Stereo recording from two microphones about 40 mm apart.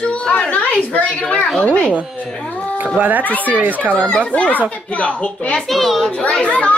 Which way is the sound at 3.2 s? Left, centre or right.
Left.